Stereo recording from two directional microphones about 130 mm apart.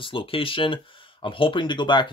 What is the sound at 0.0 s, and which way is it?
Speech, 45° left (ahead or behind).